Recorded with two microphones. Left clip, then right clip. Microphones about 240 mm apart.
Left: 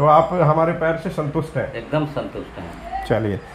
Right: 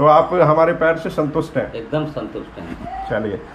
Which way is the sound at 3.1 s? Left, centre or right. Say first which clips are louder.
Left 1 dB; left.